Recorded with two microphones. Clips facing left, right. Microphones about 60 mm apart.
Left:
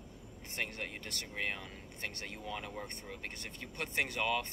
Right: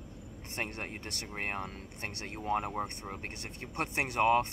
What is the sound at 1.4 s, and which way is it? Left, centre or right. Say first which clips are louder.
Speech: right 3 dB; right.